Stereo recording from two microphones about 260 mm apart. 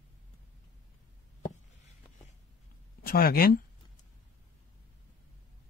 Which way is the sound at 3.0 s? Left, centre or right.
Left.